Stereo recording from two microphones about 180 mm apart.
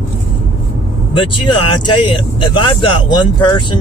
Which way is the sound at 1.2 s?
25° left (ahead or behind).